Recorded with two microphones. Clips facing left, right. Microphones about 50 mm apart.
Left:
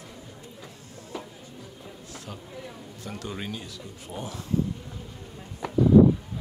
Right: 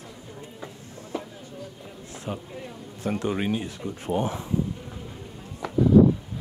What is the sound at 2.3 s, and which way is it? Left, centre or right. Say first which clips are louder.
Speech: right 7 dB; right.